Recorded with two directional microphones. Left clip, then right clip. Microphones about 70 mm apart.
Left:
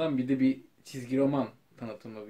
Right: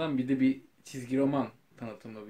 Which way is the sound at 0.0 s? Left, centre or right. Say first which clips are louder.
Left 1 dB; right.